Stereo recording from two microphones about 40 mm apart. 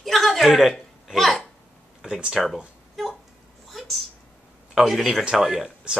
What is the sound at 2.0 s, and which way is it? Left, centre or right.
Speech, centre.